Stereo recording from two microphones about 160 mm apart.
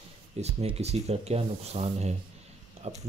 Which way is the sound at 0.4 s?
40° right (ahead or behind).